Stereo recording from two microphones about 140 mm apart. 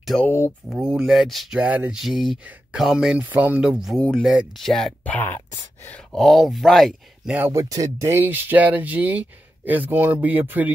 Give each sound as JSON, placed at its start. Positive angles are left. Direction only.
{"t": 0.2, "sound": "speech", "side_deg": 15}
{"t": 0.7, "sound": "speech", "side_deg": -5}
{"t": 7.5, "sound": "speech", "side_deg": -25}